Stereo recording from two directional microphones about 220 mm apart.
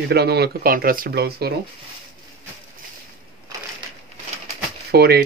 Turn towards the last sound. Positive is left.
turn(degrees=-45)  # may be behind; listen again after turning